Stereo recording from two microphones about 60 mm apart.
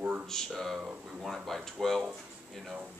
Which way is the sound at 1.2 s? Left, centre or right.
Centre.